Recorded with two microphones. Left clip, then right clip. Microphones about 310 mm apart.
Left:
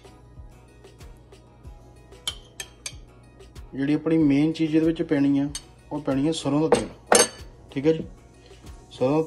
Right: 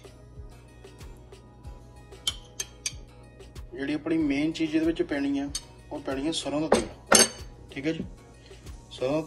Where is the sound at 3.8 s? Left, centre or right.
Left.